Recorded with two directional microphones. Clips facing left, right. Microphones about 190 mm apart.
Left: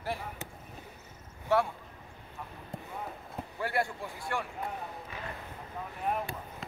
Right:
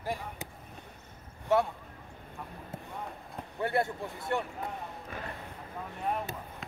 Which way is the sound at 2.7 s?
Centre (ahead or behind).